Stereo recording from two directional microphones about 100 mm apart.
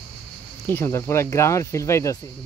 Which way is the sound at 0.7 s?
25° left (ahead or behind).